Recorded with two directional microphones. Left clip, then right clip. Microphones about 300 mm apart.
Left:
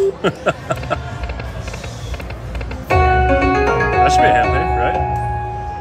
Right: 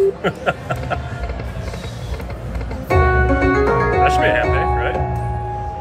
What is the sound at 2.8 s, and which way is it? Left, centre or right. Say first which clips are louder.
Music: left 2 dB; centre.